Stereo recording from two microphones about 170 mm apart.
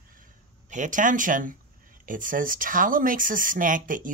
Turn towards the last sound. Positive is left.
turn(degrees=-55)  # may be behind; listen again after turning